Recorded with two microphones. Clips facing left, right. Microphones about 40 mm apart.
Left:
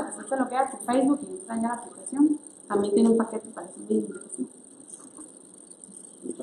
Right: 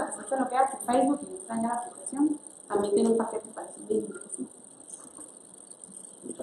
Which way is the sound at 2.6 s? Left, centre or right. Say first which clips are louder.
Left 2 dB; left.